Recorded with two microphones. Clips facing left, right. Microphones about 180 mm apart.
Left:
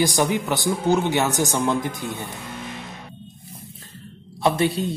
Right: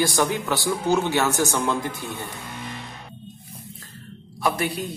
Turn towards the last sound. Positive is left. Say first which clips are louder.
# left 4 dB
turn(degrees=25)  # may be behind; listen again after turning